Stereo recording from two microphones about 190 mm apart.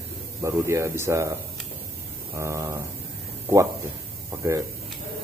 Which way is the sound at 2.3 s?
15° right (ahead or behind).